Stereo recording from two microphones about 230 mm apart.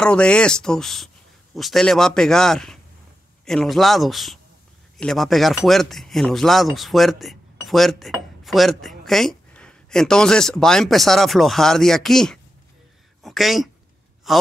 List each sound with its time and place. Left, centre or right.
0.0 s speech: centre